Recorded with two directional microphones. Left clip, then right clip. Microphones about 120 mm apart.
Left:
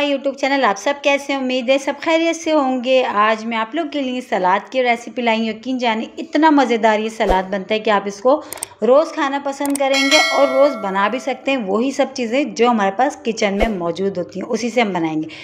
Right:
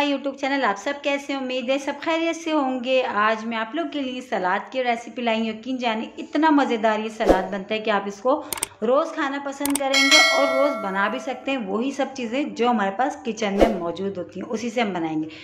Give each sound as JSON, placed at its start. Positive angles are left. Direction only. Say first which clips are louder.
{"t": 0.4, "sound": "a woman's voice", "louder": "left 6 dB", "side_deg": 35}
{"t": 9.8, "sound": "speech", "louder": "left 1 dB", "side_deg": 0}
{"t": 10.8, "sound": "a woman's voice", "louder": "left 5 dB", "side_deg": 35}